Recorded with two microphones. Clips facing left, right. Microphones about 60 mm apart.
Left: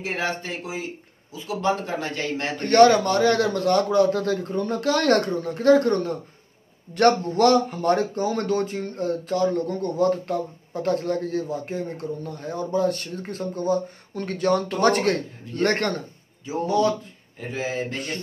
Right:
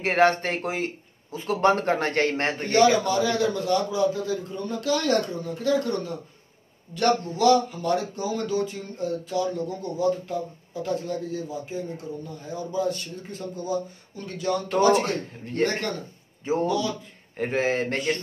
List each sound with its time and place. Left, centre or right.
0.0 s speech: right
2.6 s a man's voice: left
16.6 s speech: left
17.4 s speech: right